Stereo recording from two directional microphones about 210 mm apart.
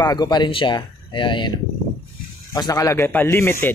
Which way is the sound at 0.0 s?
20° left (ahead or behind).